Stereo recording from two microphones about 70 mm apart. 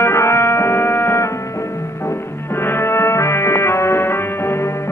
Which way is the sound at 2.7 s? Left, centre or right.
Left.